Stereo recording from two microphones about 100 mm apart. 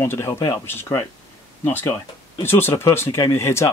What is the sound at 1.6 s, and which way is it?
Speech, 20° left (ahead or behind).